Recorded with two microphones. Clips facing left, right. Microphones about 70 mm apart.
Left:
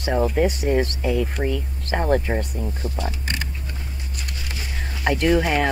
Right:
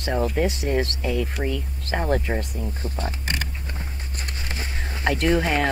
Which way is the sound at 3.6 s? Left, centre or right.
Right.